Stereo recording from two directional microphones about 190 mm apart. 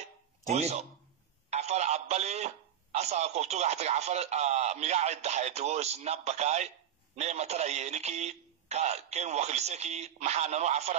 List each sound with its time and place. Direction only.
0.5 s speech: 35° right (ahead or behind)